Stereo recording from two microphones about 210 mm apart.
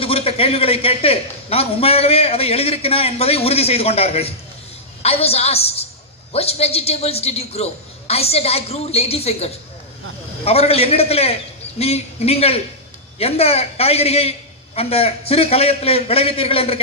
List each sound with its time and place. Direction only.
0.0 s a man's voice: 30° left (ahead or behind)